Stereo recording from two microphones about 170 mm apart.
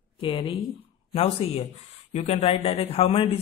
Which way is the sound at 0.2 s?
30° left (ahead or behind).